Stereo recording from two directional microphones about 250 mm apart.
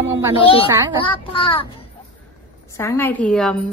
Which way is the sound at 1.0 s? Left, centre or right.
Left.